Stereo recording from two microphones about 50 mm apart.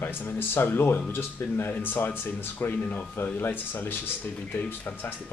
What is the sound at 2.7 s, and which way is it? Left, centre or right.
Speech, left.